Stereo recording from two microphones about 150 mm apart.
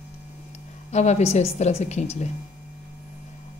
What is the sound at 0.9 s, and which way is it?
A woman's voice, 50° left (ahead or behind).